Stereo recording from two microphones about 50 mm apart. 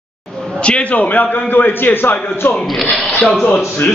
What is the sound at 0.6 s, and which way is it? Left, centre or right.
A man's voice, left.